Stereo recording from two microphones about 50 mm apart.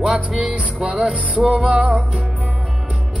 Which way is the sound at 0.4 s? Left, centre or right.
Right.